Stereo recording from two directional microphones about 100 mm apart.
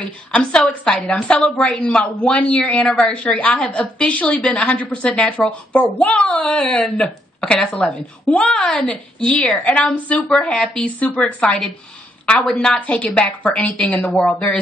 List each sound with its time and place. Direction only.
0.0 s a woman's voice: 10° left (ahead or behind)
11.0 s a woman's voice: 15° left (ahead or behind)
11.4 s a woman's voice: 5° left (ahead or behind)